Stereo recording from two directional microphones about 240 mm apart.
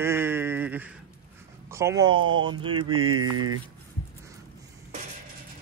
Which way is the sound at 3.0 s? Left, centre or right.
Right.